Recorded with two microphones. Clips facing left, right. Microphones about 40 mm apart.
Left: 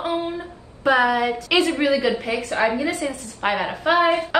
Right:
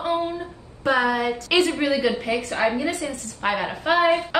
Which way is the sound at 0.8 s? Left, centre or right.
Centre.